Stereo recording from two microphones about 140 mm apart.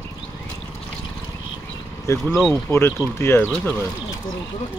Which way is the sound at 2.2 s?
Centre (ahead or behind).